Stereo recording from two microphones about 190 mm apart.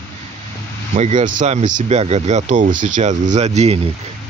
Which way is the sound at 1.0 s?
35° right (ahead or behind).